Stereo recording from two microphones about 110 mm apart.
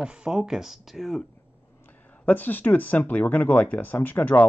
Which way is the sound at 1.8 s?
15° left (ahead or behind).